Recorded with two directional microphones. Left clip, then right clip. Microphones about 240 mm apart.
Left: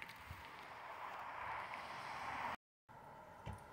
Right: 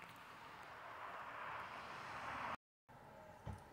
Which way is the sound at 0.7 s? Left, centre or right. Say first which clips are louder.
Left 2 dB; right.